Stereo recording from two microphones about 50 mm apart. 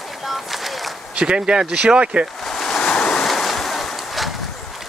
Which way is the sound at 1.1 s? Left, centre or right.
Centre.